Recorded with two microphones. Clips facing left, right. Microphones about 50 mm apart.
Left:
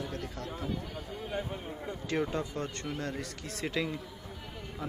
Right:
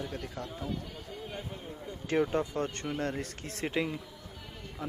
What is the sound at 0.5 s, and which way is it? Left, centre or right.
Speech, centre.